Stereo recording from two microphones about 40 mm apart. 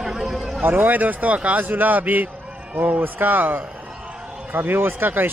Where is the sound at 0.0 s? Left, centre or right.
Centre.